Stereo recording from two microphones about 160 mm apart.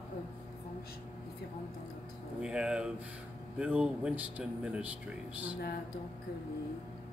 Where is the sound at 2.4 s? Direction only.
5° right (ahead or behind).